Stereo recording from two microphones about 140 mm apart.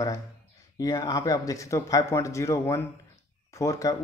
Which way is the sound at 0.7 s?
25° left (ahead or behind).